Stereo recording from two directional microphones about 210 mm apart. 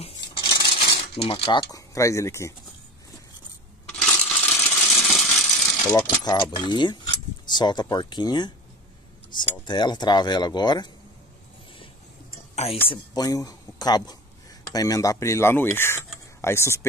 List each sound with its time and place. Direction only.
0.0 s coin: 20° left (ahead or behind)
3.9 s coin: 5° left (ahead or behind)
6.2 s mechanisms: 20° left (ahead or behind)
12.5 s mechanisms: 25° left (ahead or behind)
14.7 s speech: 15° left (ahead or behind)